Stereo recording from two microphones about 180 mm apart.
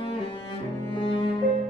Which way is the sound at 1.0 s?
30° left (ahead or behind).